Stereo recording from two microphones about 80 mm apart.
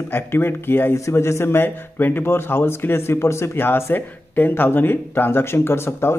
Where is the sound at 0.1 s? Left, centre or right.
Left.